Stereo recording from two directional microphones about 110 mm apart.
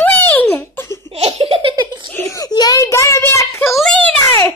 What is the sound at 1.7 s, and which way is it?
Giggle, 45° right (ahead or behind).